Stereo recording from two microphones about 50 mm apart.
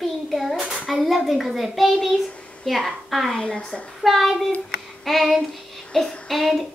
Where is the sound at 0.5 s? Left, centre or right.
Centre.